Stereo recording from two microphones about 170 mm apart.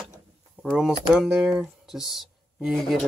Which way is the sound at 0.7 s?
5° right (ahead or behind).